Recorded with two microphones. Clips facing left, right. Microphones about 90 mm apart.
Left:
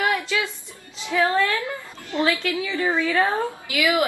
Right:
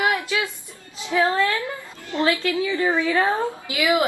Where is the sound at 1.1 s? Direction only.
15° right (ahead or behind).